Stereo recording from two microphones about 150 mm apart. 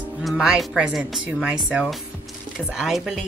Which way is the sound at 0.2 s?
Centre (ahead or behind).